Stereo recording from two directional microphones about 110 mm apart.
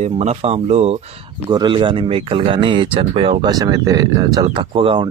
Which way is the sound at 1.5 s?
45° right (ahead or behind).